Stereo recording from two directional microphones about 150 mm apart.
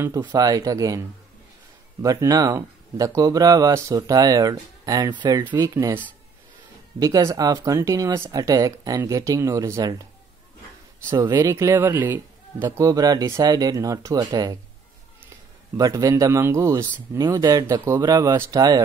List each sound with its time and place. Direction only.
0.0 s speech: 20° right (ahead or behind)
7.0 s speech: 20° right (ahead or behind)
11.1 s speech: 25° right (ahead or behind)
15.8 s speech: 20° right (ahead or behind)